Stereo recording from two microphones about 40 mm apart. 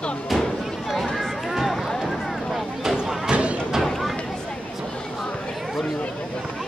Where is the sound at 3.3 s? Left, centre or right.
Right.